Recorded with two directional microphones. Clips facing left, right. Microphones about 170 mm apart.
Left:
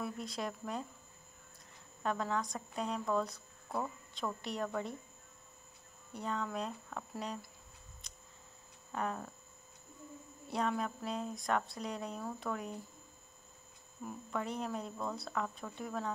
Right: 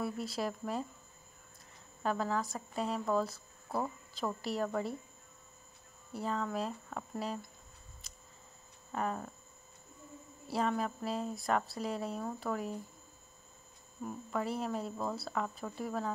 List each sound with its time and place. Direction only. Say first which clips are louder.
0.0 s a woman's voice: right 4 dB; 5° right (ahead or behind)
2.0 s a woman's voice: right 2 dB; centre (ahead or behind)
4.4 s a woman's voice: right 4 dB; 5° right (ahead or behind)
6.1 s a woman's voice: right 3 dB; 5° right (ahead or behind)
8.0 s a sound: right 1 dB; 5° right (ahead or behind)
8.9 s a woman's voice: right 2 dB; 5° right (ahead or behind)
10.5 s a woman's voice: right 2 dB; centre (ahead or behind)
14.0 s a woman's voice: right 3 dB; 5° right (ahead or behind)